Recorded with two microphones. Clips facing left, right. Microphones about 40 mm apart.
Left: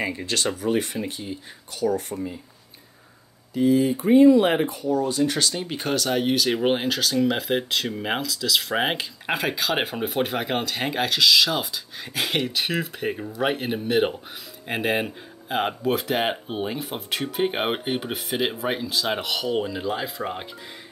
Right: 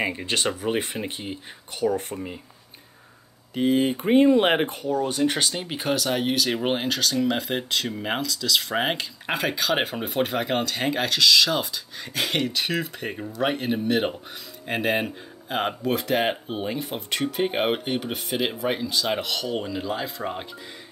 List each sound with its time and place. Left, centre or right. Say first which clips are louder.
0.0 s speech: right 1 dB; right
1.8 s speech: even; centre
3.5 s speech: left 2 dB; right
5.5 s speech: left 1 dB; centre
5.8 s speech: even; centre